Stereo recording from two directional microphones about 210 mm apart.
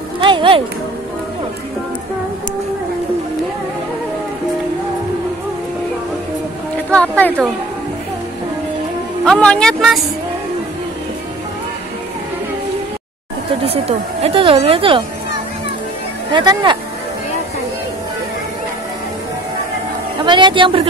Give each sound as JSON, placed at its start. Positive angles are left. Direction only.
{"t": 0.2, "sound": "music", "side_deg": -25}
{"t": 6.9, "sound": "speech", "side_deg": 5}
{"t": 9.2, "sound": "speech", "side_deg": 5}
{"t": 13.7, "sound": "speech", "side_deg": -30}
{"t": 16.3, "sound": "speech", "side_deg": -20}
{"t": 20.2, "sound": "speech", "side_deg": -20}